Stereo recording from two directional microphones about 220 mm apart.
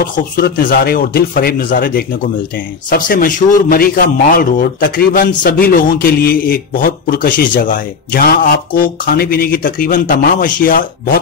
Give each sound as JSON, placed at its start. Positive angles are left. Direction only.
{"t": 0.0, "sound": "a man's voice", "side_deg": 40}